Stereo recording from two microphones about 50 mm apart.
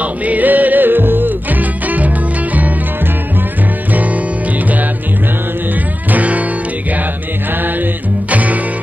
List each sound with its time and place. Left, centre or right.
0.0 s music: right
6.1 s music: right
8.3 s music: right